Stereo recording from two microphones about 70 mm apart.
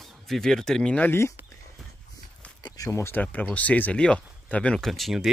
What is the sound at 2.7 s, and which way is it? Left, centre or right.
Speech, left.